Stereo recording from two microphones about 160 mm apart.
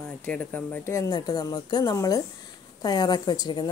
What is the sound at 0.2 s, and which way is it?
Speech, 10° left (ahead or behind).